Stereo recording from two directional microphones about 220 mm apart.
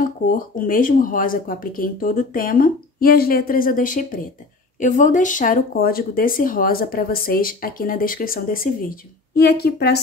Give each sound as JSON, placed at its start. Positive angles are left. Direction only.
{"t": 0.0, "sound": "speech", "side_deg": 40}